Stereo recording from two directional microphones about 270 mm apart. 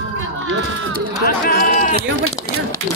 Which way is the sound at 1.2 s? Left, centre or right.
Left.